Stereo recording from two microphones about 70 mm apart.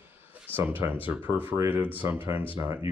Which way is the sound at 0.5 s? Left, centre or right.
Right.